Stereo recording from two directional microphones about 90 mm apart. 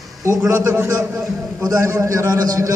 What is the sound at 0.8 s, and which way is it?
A man's voice, 35° right (ahead or behind).